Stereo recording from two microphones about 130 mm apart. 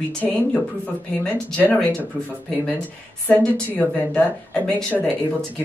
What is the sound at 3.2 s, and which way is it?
Speech, 10° left (ahead or behind).